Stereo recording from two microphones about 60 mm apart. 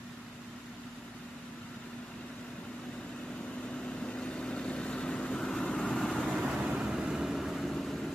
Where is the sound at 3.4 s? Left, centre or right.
Centre.